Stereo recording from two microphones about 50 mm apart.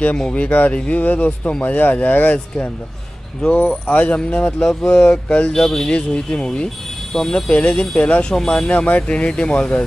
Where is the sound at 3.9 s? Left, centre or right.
Left.